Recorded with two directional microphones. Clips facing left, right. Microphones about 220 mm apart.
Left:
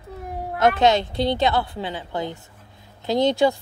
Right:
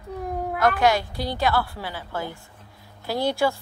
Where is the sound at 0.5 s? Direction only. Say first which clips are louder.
Left 3 dB; 20° left (ahead or behind).